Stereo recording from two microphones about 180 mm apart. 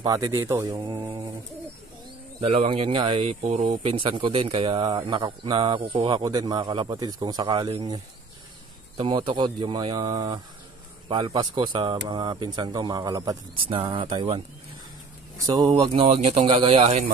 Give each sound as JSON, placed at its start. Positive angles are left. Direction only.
{"t": 0.0, "sound": "speech", "side_deg": -20}
{"t": 2.4, "sound": "speech", "side_deg": -30}
{"t": 15.4, "sound": "speech", "side_deg": -25}
{"t": 15.9, "sound": "speech", "side_deg": -40}